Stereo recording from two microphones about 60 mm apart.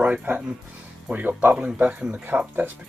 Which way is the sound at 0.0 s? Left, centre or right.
Right.